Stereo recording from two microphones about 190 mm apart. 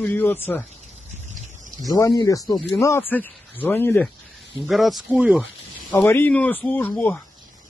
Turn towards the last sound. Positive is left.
turn(degrees=10)  # may be behind; listen again after turning